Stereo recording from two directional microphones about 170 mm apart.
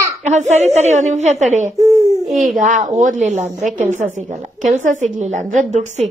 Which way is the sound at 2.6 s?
50° right (ahead or behind).